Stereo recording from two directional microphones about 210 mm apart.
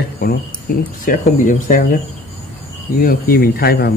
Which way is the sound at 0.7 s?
40° left (ahead or behind).